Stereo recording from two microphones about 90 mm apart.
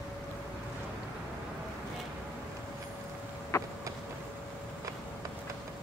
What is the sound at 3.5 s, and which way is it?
Vehicle, 35° left (ahead or behind).